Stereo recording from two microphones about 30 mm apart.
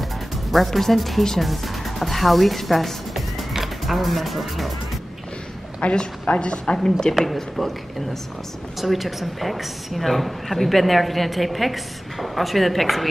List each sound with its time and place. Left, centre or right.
0.5 s a woman's voice: centre
5.8 s a woman's voice: left
6.2 s a woman's voice: left
7.5 s speech: centre
8.8 s a woman's voice: centre